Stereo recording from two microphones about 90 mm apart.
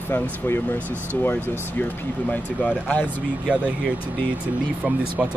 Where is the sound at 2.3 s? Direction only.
15° left (ahead or behind).